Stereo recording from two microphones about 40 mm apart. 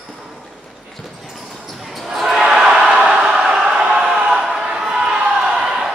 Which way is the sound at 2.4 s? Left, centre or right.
Centre.